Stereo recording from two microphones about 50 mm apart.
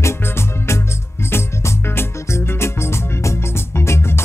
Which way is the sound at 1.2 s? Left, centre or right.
Left.